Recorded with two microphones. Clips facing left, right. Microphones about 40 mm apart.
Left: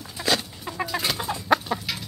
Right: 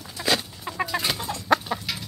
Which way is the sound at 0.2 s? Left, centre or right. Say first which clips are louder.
Even; centre.